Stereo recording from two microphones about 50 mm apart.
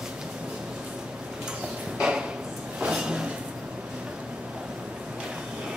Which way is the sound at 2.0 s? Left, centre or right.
Centre.